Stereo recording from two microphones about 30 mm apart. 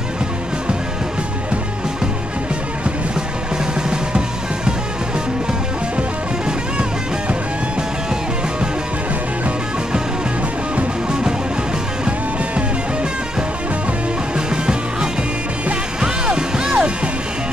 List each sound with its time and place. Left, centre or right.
14.5 s music: right